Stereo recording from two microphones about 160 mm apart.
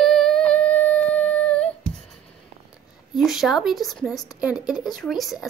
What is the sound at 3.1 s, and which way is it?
A woman's voice, centre (ahead or behind).